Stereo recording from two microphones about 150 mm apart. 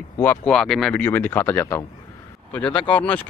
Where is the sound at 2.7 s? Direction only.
35° left (ahead or behind).